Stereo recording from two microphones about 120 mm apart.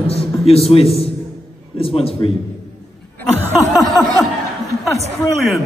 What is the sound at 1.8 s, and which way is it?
Speech, 50° left (ahead or behind).